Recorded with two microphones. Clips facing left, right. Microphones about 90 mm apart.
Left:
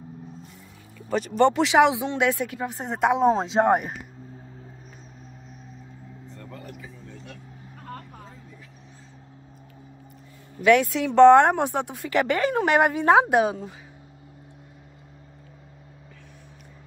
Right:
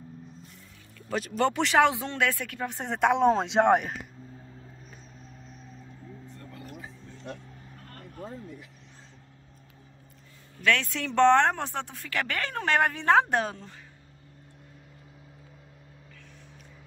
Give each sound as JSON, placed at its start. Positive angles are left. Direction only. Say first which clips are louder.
{"t": 0.9, "sound": "speech", "louder": "left 7 dB", "side_deg": 0}
{"t": 1.9, "sound": "speech", "louder": "left 4 dB", "side_deg": 15}
{"t": 2.7, "sound": "speech", "louder": "left 1 dB", "side_deg": 5}
{"t": 10.6, "sound": "speech", "louder": "left 8 dB", "side_deg": 15}